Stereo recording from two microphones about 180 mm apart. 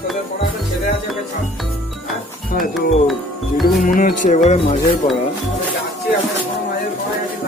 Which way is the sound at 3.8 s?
50° left (ahead or behind).